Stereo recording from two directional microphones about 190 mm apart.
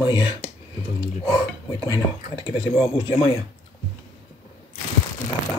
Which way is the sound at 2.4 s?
30° left (ahead or behind).